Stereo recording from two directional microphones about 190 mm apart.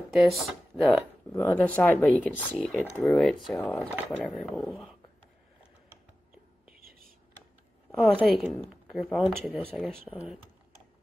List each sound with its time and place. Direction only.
0.1 s speech: centre (ahead or behind)
2.5 s speech: 10° right (ahead or behind)
3.1 s a woman's voice: centre (ahead or behind)
3.9 s a woman's voice: 10° right (ahead or behind)
6.7 s whispering: 50° right (ahead or behind)
8.0 s a woman's voice: 5° right (ahead or behind)